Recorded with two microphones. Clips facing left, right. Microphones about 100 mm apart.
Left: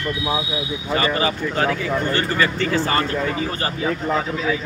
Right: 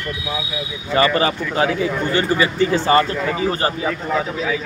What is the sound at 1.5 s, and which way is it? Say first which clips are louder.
Speech: right 2 dB; 15° right (ahead or behind).